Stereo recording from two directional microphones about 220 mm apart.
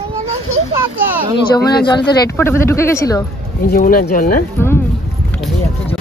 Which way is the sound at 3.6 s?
40° left (ahead or behind).